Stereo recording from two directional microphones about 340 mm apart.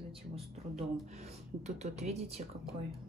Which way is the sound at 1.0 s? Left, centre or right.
Centre.